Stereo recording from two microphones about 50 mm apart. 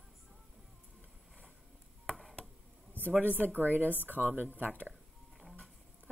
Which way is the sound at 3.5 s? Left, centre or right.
Right.